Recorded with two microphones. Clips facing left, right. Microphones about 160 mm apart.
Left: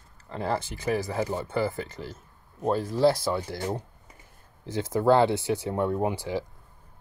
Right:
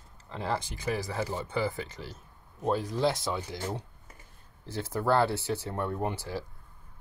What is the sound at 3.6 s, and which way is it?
Speech, 10° left (ahead or behind).